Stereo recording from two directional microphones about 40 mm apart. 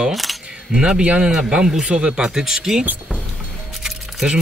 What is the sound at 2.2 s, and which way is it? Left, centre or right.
Speech, centre.